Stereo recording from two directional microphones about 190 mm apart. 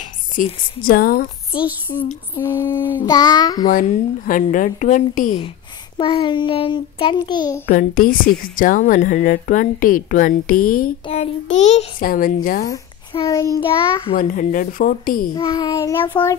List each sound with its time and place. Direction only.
0.0 s a sound: 40° left (ahead or behind)
0.8 s speech: 50° left (ahead or behind)
1.9 s a child's voice: 20° left (ahead or behind)
2.3 s child singing: 10° left (ahead or behind)
3.0 s a child's voice: 20° left (ahead or behind)
4.3 s speech: 45° left (ahead or behind)
5.9 s a child's voice: 25° left (ahead or behind)
7.6 s speech: 50° left (ahead or behind)
11.1 s a child's voice: 35° left (ahead or behind)
13.2 s child singing: 15° left (ahead or behind)
13.7 s a child's voice: 25° left (ahead or behind)
14.1 s speech: 45° left (ahead or behind)
15.3 s child singing: 20° left (ahead or behind)